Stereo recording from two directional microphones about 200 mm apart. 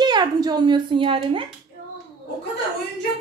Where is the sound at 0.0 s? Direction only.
20° right (ahead or behind).